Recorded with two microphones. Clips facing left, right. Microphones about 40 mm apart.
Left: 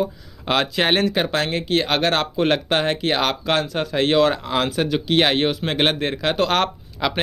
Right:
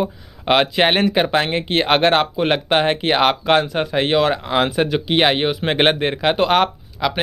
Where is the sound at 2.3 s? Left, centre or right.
Centre.